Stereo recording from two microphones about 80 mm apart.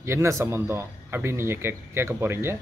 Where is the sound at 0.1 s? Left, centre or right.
Right.